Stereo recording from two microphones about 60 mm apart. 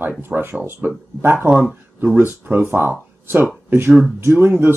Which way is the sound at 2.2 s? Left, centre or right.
Right.